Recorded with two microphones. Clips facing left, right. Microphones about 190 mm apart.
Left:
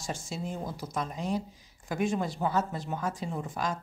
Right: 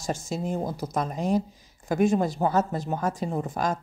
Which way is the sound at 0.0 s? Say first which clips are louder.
Right 6 dB; 40° right (ahead or behind).